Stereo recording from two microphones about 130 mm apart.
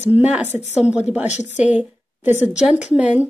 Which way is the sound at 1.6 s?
10° right (ahead or behind).